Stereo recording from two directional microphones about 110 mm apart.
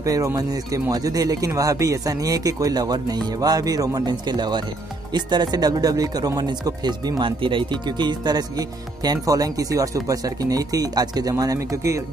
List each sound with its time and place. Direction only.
0.0 s speech: 30° right (ahead or behind)